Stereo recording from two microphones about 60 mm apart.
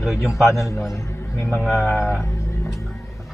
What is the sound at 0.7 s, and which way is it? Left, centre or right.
Speech, left.